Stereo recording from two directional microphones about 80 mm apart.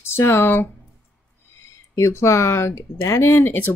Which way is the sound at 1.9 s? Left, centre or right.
Left.